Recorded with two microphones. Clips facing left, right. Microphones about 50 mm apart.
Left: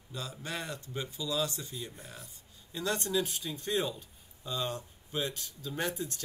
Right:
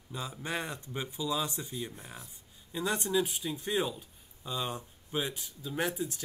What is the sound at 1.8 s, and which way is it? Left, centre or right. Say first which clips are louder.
Speech: right 3 dB; centre.